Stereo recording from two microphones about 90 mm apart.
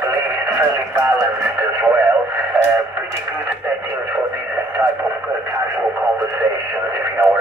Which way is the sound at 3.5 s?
15° right (ahead or behind).